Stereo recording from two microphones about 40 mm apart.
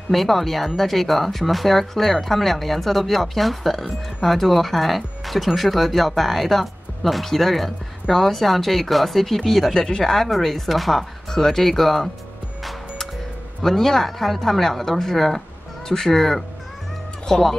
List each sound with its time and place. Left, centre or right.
0.1 s speech: centre
9.8 s a woman's voice: centre
10.1 s speech: centre
13.6 s a woman's voice: centre